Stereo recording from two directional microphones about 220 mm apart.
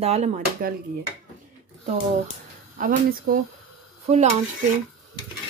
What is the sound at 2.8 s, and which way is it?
Speech, 40° right (ahead or behind).